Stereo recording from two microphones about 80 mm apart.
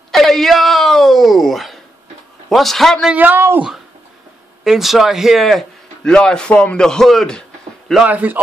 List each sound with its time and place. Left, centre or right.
0.1 s a sound: centre
2.5 s a man's voice: centre
3.1 s speech: right
4.6 s a man's voice: centre
8.1 s speech: right